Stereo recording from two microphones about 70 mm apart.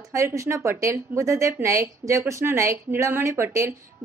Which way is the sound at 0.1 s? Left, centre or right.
Right.